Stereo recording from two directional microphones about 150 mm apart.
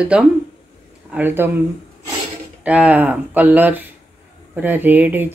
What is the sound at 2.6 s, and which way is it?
Speech, 10° right (ahead or behind).